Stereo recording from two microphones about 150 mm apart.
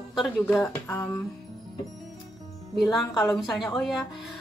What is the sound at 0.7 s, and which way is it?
Speech, 15° left (ahead or behind).